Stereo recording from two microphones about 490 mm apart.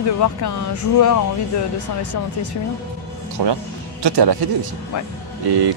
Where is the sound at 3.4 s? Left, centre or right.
Right.